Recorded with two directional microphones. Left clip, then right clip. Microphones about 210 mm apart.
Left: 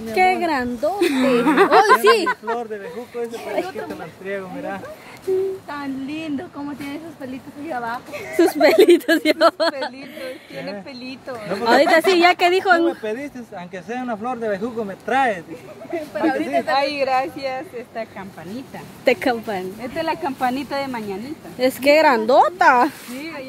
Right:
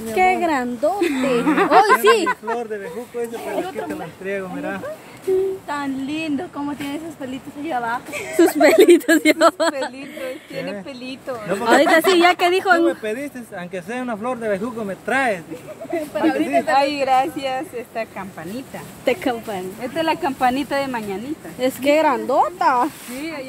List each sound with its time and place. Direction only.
0.1 s speech: 10° left (ahead or behind)
1.4 s speech: 55° left (ahead or behind)
2.2 s a woman's voice: 25° left (ahead or behind)
3.4 s a woman's voice: 10° left (ahead or behind)
4.3 s speech: 10° right (ahead or behind)
5.7 s a woman's voice: centre (ahead or behind)
12.8 s speech: 20° right (ahead or behind)
15.9 s speech: 5° left (ahead or behind)
16.7 s a woman's voice: 20° left (ahead or behind); by 18.0 s 5° left (ahead or behind)
19.0 s a woman's voice: 25° left (ahead or behind)
19.8 s speech: 5° left (ahead or behind)
21.5 s speech: 25° left (ahead or behind); by 22.8 s 45° left (ahead or behind)